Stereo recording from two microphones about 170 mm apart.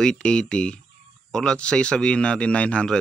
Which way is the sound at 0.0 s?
5° left (ahead or behind).